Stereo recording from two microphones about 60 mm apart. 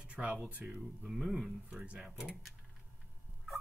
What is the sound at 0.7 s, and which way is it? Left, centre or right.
Speech, centre.